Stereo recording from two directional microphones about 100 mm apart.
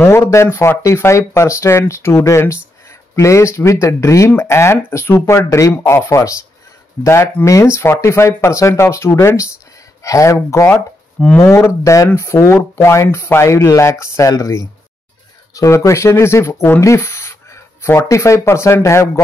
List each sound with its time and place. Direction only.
0.0 s speech: 30° left (ahead or behind)
10.7 s speech: 15° left (ahead or behind)
11.3 s speech: 30° left (ahead or behind)